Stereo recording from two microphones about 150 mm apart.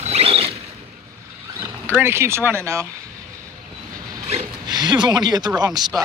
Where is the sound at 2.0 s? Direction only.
15° right (ahead or behind).